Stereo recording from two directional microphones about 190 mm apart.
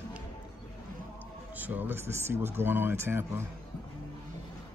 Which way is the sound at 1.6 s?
10° right (ahead or behind).